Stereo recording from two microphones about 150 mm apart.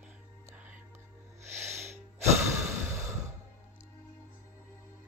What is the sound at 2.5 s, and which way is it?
Sigh, 20° right (ahead or behind).